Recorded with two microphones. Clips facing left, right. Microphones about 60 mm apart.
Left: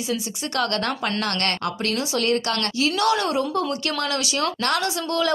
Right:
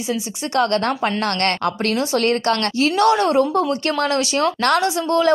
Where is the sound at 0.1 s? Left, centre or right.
Right.